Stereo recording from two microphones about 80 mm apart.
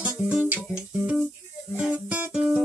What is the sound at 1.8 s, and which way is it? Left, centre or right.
Music, centre.